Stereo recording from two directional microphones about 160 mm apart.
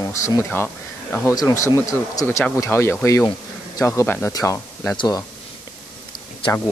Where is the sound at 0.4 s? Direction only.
15° left (ahead or behind).